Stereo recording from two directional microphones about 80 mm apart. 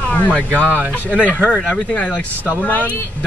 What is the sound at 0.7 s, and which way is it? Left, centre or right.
Speech, centre.